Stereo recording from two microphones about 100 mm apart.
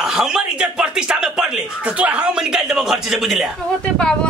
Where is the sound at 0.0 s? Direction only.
5° right (ahead or behind).